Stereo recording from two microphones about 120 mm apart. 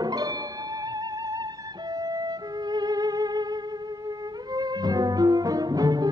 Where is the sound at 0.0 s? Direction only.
30° right (ahead or behind).